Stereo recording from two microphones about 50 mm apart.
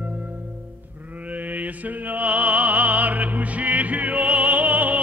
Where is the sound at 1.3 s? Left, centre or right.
Right.